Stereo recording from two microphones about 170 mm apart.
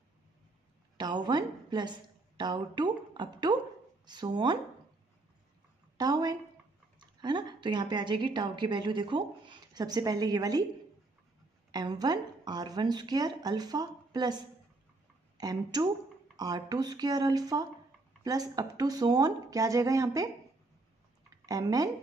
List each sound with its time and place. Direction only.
0.9 s a woman's voice: 25° right (ahead or behind)
5.9 s a woman's voice: 25° right (ahead or behind)
11.7 s speech: 25° right (ahead or behind)
21.5 s speech: 20° right (ahead or behind)